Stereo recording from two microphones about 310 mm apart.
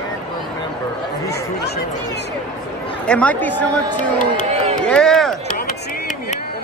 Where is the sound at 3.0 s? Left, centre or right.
Centre.